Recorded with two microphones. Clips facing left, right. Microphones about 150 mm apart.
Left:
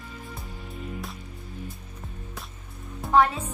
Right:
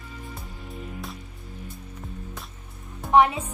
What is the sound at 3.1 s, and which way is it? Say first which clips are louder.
Speech: right 2 dB; 20° right (ahead or behind).